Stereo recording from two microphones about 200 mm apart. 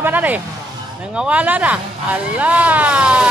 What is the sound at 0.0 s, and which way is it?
Music, 10° right (ahead or behind).